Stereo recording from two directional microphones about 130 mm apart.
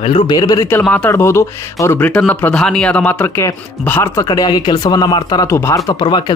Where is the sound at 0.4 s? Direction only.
30° left (ahead or behind).